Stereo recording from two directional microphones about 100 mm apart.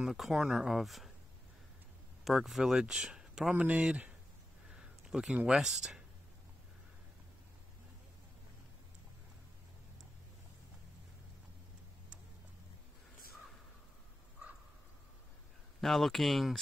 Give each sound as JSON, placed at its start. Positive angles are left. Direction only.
{"t": 0.0, "sound": "speech", "side_deg": -5}
{"t": 2.2, "sound": "speech", "side_deg": 0}
{"t": 15.8, "sound": "speech", "side_deg": 0}